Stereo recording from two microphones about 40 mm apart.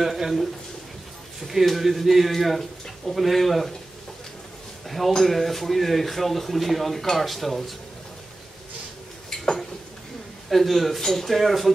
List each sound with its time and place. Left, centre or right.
0.0 s speech: centre
1.5 s speech: centre
4.8 s speech: centre
10.5 s speech: centre